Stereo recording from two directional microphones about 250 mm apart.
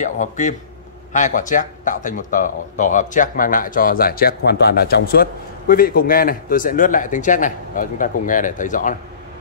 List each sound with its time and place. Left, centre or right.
0.0 s speech: left